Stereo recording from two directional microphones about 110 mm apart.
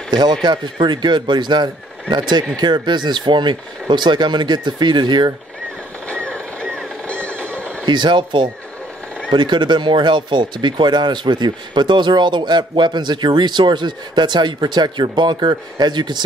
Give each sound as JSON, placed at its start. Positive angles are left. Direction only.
{"t": 0.1, "sound": "speech", "side_deg": -40}
{"t": 6.0, "sound": "a sound", "side_deg": 10}
{"t": 7.5, "sound": "neigh", "side_deg": 10}
{"t": 7.8, "sound": "speech", "side_deg": -45}